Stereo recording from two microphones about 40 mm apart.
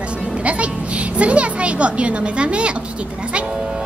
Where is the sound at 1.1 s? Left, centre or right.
Right.